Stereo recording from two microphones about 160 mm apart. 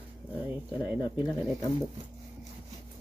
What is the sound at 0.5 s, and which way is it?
Speech, 10° right (ahead or behind).